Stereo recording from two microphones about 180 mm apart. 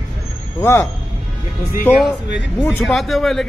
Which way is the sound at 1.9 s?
Centre (ahead or behind).